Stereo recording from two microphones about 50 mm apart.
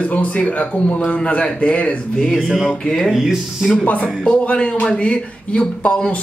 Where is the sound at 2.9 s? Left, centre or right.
Centre.